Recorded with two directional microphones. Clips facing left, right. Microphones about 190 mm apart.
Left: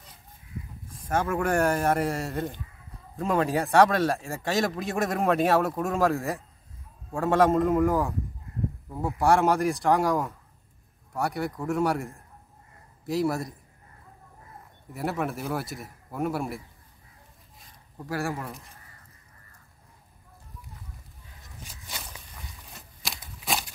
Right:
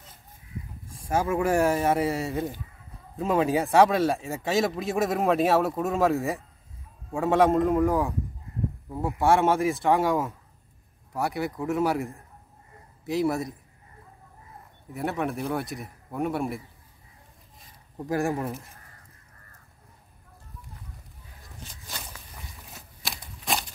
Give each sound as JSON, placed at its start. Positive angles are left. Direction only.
{"t": 1.0, "sound": "speech", "side_deg": -10}
{"t": 14.9, "sound": "speech", "side_deg": 0}
{"t": 17.9, "sound": "speech", "side_deg": -20}
{"t": 22.7, "sound": "a sound", "side_deg": 0}